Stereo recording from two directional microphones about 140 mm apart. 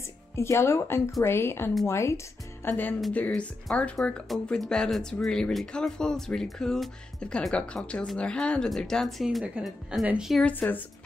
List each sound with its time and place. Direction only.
0.4 s a woman's voice: 20° left (ahead or behind); by 10.4 s 5° right (ahead or behind)
10.4 s a woman's voice: 10° left (ahead or behind)